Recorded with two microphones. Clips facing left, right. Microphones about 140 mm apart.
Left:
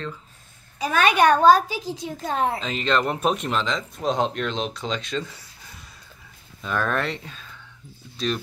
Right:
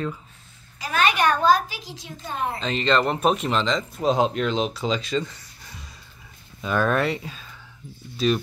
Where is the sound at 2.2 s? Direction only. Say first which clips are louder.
Left 4 dB; 90° left.